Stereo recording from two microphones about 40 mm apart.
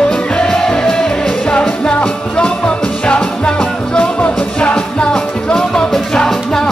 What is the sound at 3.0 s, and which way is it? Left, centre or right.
Music, left.